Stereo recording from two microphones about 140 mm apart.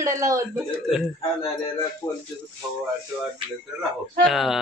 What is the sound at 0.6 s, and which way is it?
Speech, centre (ahead or behind).